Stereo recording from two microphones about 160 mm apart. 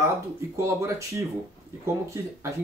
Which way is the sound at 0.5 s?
20° right (ahead or behind).